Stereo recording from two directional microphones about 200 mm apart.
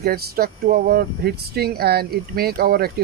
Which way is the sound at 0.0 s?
50° right (ahead or behind).